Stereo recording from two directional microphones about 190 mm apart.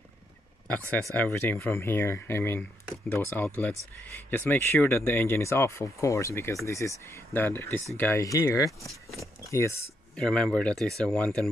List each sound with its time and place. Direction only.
1.1 s speech: 10° left (ahead or behind)
10.2 s speech: 5° left (ahead or behind)